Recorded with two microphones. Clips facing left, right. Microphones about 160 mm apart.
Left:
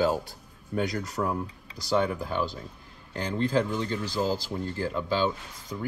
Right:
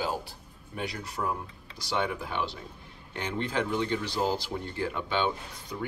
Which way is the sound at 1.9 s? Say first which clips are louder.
Left 4 dB; 40° left (ahead or behind).